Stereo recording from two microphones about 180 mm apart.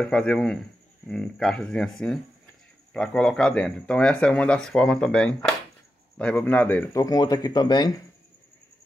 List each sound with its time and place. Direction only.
0.0 s speech: 5° left (ahead or behind); by 7.9 s 25° left (ahead or behind)